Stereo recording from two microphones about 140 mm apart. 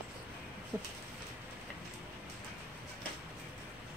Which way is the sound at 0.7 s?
25° right (ahead or behind).